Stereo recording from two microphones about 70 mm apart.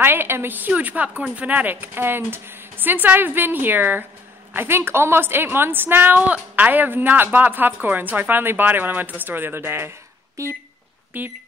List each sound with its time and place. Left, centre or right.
0.0 s a woman's voice: right
11.1 s a woman's voice: right